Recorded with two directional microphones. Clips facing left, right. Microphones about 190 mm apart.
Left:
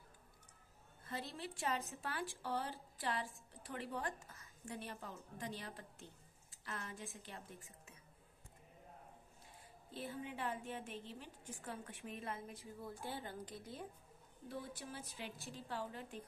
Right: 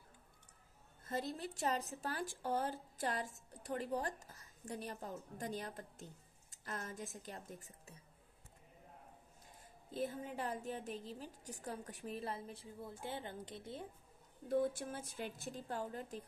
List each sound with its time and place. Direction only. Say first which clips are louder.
1.0 s a woman's voice: right 5 dB; 45° right (ahead or behind)
9.9 s a woman's voice: right 4 dB; 40° right (ahead or behind); by 13.8 s 25° right (ahead or behind)
14.5 s a woman's voice: right 11 dB; 50° right (ahead or behind)